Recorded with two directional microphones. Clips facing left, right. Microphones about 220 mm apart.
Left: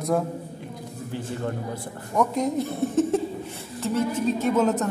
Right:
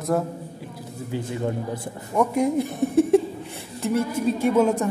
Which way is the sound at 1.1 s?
10° right (ahead or behind).